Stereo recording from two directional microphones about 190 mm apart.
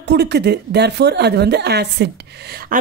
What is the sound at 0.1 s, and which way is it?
A woman's voice, 60° right (ahead or behind).